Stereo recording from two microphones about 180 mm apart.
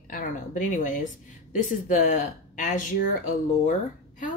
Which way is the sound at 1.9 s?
45° left (ahead or behind).